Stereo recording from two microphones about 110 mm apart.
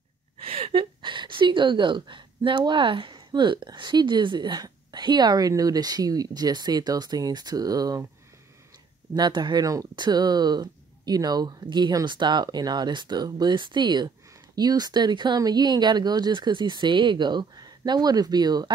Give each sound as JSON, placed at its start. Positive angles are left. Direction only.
{"t": 0.4, "sound": "a woman's voice", "side_deg": -60}
{"t": 9.1, "sound": "speech", "side_deg": -40}